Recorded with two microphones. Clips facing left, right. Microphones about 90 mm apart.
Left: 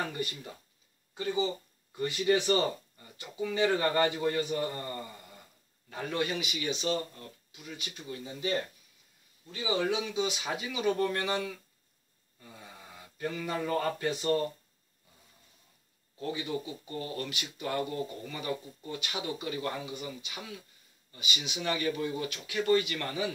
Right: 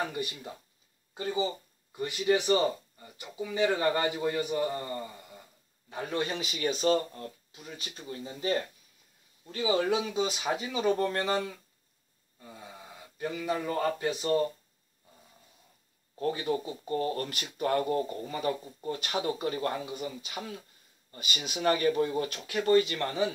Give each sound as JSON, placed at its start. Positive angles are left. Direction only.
{"t": 0.1, "sound": "a man's voice", "side_deg": -20}
{"t": 13.2, "sound": "a man's voice", "side_deg": -15}
{"t": 16.2, "sound": "speech", "side_deg": -45}